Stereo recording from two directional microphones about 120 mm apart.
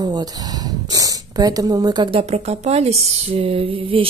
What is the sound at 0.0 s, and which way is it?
Speech, 35° right (ahead or behind).